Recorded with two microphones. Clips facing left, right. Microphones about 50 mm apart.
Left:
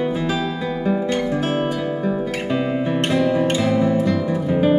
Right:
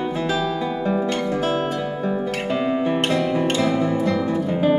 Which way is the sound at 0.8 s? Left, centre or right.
Centre.